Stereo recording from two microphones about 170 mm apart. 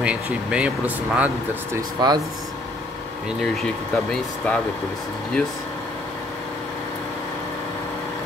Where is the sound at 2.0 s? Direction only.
25° right (ahead or behind).